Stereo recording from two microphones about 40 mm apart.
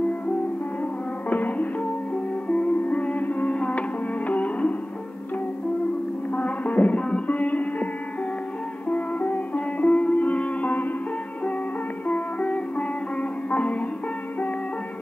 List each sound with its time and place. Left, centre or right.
1.3 s music: left
2.4 s music: left
6.3 s music: left
12.1 s music: left